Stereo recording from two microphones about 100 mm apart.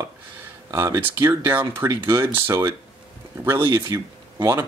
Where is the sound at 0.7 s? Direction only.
30° right (ahead or behind).